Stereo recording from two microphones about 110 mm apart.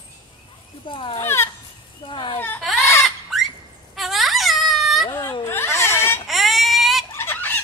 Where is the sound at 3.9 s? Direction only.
Centre (ahead or behind).